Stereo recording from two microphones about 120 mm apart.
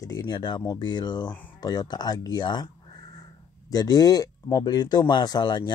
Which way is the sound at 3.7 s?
30° left (ahead or behind).